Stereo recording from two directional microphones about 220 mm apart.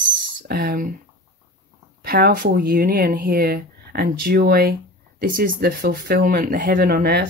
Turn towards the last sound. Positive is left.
turn(degrees=-45)  # may be behind; listen again after turning